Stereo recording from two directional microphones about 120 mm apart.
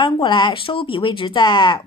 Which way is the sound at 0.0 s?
45° left (ahead or behind).